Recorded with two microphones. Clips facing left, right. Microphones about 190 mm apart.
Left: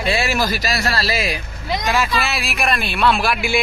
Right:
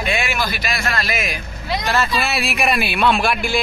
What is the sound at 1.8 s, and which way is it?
Speech, 15° left (ahead or behind).